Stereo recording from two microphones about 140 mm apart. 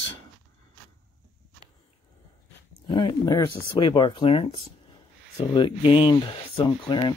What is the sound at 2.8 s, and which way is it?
Speech, 35° left (ahead or behind).